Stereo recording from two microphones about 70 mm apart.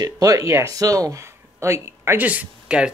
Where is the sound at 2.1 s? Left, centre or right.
Right.